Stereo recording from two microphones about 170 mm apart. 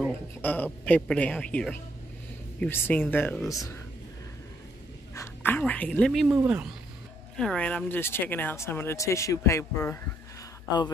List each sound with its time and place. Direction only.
0.4 s speech: 10° left (ahead or behind)
5.1 s speech: 15° left (ahead or behind)
6.3 s speech: 10° right (ahead or behind)
7.3 s speech: 5° left (ahead or behind)